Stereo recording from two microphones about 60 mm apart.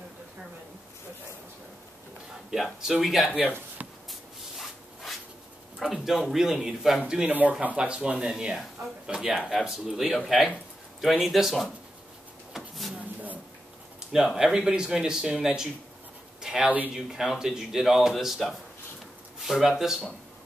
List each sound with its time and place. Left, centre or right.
2.5 s speech: centre
4.1 s a sound: centre
5.8 s speech: centre
7.2 s speech: right
7.7 s speech: centre
12.5 s a sound: centre
14.1 s speech: centre